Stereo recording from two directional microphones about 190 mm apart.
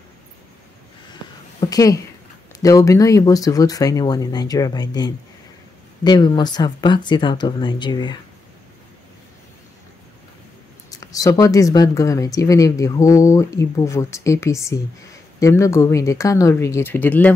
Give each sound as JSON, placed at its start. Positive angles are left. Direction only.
{"t": 1.6, "sound": "speech", "side_deg": 20}
{"t": 10.9, "sound": "speech", "side_deg": 20}